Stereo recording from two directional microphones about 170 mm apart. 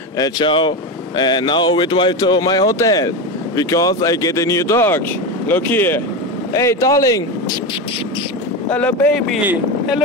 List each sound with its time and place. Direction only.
0.2 s speech: 30° left (ahead or behind)
8.6 s speech: 10° left (ahead or behind)